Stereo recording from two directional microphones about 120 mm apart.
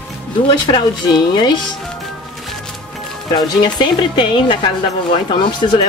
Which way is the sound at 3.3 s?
40° left (ahead or behind).